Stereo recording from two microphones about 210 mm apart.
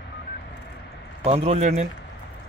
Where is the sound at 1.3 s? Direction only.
30° right (ahead or behind).